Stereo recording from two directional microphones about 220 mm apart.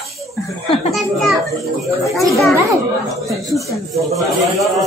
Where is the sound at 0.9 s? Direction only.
Centre (ahead or behind).